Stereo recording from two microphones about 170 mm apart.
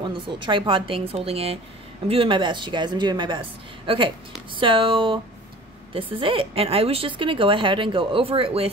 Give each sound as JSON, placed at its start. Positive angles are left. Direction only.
{"t": 0.0, "sound": "a woman's voice", "side_deg": -30}